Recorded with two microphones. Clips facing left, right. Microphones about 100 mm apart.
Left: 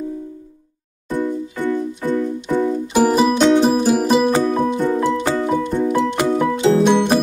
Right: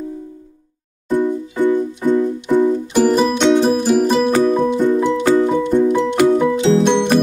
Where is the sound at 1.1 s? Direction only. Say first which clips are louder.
Right 4 dB; 10° right (ahead or behind).